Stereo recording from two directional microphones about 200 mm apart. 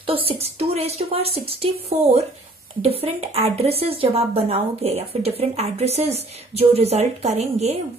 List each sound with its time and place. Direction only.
0.0 s a woman's voice: 25° right (ahead or behind)